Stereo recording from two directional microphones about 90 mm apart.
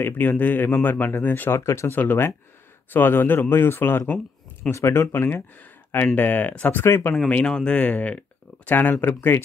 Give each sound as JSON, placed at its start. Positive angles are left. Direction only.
{"t": 0.0, "sound": "speech", "side_deg": 20}
{"t": 1.6, "sound": "speech", "side_deg": 30}
{"t": 7.2, "sound": "speech", "side_deg": 10}